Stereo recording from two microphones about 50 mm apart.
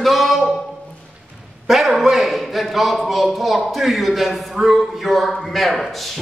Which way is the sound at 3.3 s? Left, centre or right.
Centre.